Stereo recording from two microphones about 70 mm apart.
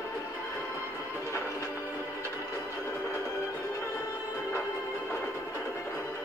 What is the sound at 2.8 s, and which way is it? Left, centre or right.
Music, left.